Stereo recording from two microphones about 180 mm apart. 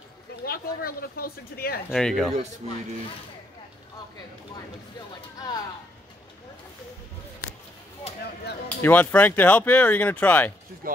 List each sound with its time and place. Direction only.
0.5 s speech: 55° left (ahead or behind)
1.9 s speech: centre (ahead or behind)
8.6 s speech: 10° left (ahead or behind)